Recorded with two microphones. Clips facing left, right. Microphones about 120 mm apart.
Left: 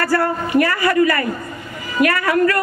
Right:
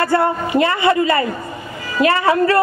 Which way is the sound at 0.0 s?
20° right (ahead or behind).